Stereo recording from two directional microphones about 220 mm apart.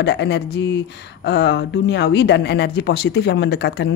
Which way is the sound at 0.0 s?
50° left (ahead or behind).